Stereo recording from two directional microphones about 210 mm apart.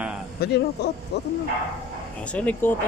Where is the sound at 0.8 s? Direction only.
50° left (ahead or behind).